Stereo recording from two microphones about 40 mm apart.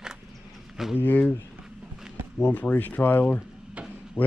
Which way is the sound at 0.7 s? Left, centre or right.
Centre.